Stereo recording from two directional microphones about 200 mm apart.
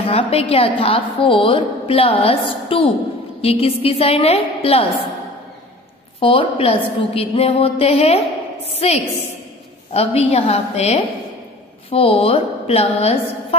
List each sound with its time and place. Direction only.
0.0 s a woman's voice: 30° left (ahead or behind)
6.1 s a woman's voice: 25° left (ahead or behind)